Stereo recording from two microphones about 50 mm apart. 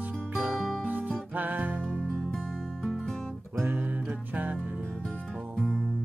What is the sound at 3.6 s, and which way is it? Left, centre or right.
Music, right.